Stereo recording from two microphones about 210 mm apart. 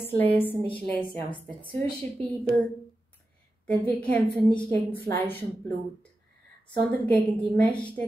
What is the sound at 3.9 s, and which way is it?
A woman's voice, 5° left (ahead or behind).